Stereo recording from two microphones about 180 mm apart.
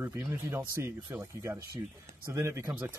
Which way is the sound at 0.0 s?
15° right (ahead or behind).